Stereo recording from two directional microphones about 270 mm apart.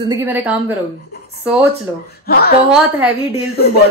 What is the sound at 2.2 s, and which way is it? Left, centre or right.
Speech, left.